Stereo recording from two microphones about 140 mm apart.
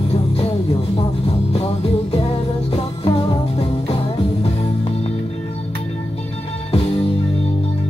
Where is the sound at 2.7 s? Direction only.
45° left (ahead or behind).